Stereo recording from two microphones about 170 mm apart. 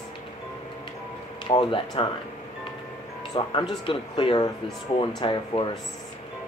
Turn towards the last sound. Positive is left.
turn(degrees=30)  # may be behind; listen again after turning